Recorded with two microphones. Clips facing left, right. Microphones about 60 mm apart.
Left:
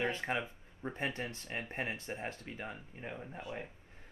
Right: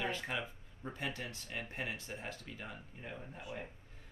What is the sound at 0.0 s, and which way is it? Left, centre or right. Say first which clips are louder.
Speech: left 3 dB; left.